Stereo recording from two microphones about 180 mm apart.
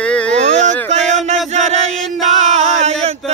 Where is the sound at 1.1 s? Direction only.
40° right (ahead or behind).